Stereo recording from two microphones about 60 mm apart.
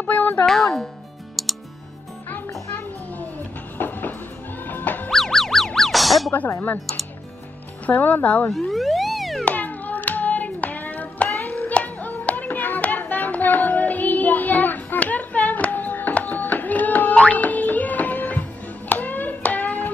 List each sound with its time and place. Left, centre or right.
0.0 s speech: left
0.5 s speech: centre
1.3 s music: centre
3.7 s music: left
5.1 s music: centre
7.8 s speech: left
8.5 s music: centre
9.4 s music: left
18.9 s hands: left